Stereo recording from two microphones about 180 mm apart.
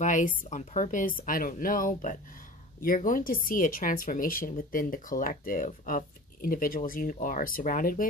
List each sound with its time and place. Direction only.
0.0 s speech: 45° left (ahead or behind)